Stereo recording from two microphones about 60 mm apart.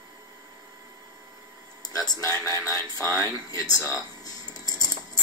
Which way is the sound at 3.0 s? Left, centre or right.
Right.